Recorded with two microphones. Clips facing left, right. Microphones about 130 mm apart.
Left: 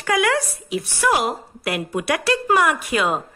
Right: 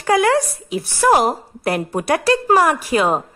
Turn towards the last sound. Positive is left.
turn(degrees=-30)  # may be behind; listen again after turning